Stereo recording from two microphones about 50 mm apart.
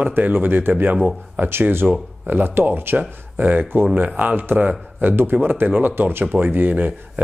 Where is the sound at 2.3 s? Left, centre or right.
Right.